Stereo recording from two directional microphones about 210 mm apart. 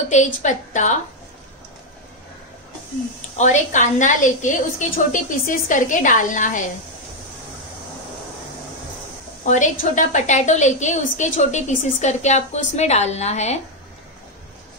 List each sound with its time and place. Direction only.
0.1 s a woman's voice: 35° left (ahead or behind)
3.3 s a woman's voice: 35° left (ahead or behind)
9.4 s a woman's voice: 35° left (ahead or behind)